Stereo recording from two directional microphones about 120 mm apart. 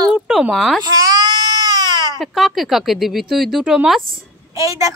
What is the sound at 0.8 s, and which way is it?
Baby cry, 30° right (ahead or behind).